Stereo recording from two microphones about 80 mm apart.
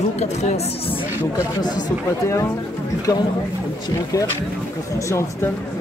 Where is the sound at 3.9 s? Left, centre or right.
Left.